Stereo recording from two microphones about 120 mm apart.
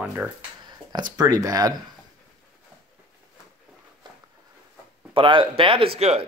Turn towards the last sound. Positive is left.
turn(degrees=-55)  # may be behind; listen again after turning